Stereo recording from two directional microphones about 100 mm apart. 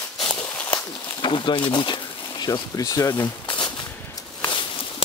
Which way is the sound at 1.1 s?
55° left (ahead or behind).